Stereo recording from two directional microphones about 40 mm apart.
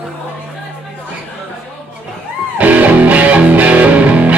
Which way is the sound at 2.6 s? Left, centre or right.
Right.